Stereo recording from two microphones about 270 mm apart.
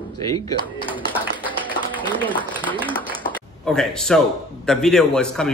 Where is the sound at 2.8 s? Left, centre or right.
Centre.